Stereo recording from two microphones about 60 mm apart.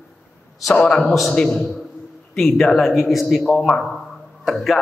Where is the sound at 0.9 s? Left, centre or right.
Centre.